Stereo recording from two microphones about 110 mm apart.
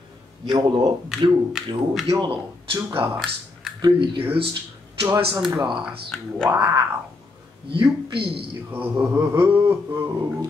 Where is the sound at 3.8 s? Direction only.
50° right (ahead or behind).